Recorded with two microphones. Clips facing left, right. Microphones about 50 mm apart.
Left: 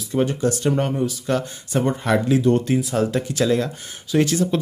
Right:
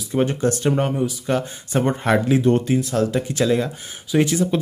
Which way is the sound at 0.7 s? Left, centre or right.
Centre.